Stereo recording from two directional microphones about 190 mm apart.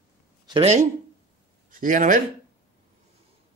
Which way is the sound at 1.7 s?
45° right (ahead or behind).